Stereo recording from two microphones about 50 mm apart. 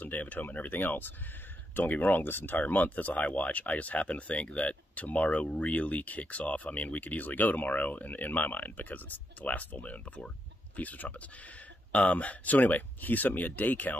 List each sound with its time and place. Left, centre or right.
0.0 s speech: left